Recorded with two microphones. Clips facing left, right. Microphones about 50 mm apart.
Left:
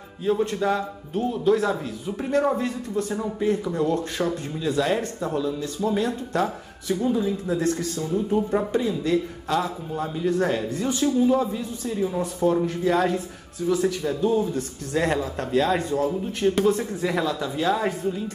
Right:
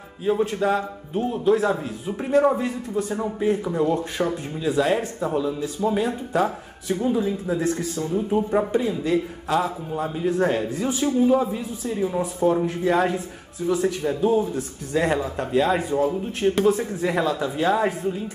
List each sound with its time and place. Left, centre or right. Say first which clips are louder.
0.2 s a man's voice: right 1 dB; centre